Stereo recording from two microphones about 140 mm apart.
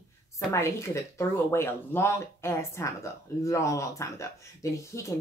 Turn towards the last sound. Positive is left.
turn(degrees=20)  # may be behind; listen again after turning